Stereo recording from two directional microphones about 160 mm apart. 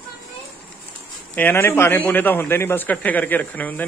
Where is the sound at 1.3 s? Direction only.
15° left (ahead or behind).